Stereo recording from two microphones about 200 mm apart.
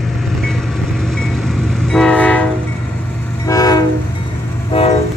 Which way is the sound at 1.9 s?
5° left (ahead or behind).